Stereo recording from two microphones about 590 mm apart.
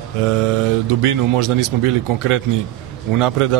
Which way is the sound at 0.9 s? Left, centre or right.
Right.